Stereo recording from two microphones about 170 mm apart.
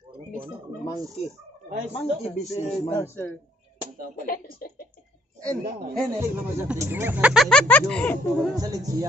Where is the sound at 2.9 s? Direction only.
15° left (ahead or behind).